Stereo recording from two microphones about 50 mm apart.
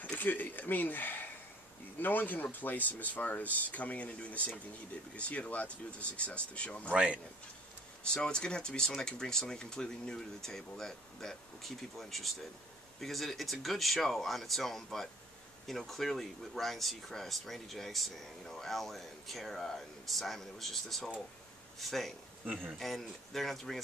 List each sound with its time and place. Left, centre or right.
0.0 s speech: left
6.9 s speech: right
8.0 s speech: centre
22.6 s speech: centre